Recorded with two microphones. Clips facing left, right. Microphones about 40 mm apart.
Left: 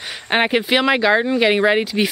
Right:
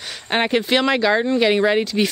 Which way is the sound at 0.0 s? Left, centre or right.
Centre.